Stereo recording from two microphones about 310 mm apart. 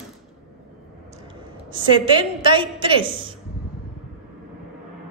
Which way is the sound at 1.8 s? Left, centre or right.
Centre.